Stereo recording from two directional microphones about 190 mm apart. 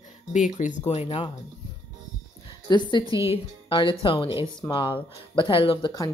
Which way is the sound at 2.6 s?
25° left (ahead or behind).